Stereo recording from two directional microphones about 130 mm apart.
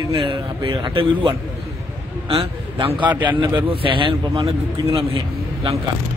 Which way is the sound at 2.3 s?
45° right (ahead or behind).